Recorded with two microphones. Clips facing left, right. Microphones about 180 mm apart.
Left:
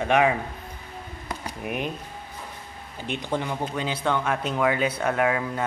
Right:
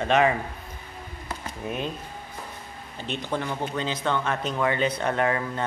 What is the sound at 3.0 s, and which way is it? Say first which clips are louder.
Speech: left 1 dB; 15° left (ahead or behind).